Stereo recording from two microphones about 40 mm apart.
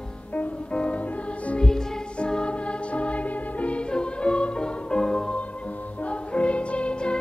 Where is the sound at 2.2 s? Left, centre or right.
Left.